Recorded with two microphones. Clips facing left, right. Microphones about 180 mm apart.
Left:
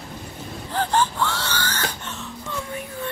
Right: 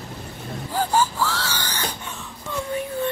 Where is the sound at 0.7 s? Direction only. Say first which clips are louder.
Even; 10° right (ahead or behind).